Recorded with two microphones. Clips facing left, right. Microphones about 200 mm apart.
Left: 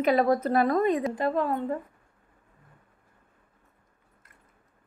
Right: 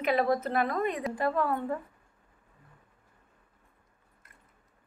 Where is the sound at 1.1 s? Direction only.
20° left (ahead or behind).